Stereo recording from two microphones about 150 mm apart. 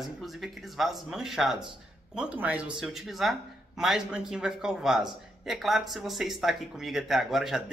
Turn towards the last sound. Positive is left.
turn(degrees=0)  # may be behind; listen again after turning